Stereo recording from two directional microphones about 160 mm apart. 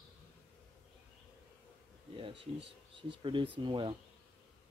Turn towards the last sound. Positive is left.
turn(degrees=-30)  # may be behind; listen again after turning